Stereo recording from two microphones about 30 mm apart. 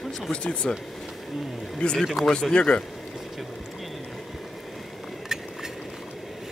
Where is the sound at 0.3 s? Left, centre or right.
Left.